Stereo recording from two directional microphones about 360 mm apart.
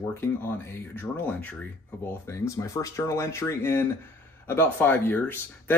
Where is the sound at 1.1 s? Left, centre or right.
Centre.